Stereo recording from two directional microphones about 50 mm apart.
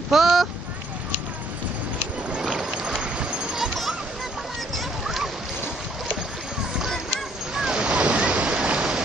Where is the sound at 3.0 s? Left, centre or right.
Centre.